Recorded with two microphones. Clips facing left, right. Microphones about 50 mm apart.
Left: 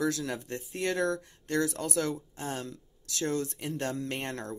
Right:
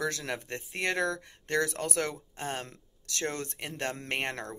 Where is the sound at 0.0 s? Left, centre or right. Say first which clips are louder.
Left 2 dB; right.